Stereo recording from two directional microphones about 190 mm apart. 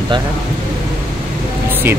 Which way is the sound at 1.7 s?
10° right (ahead or behind).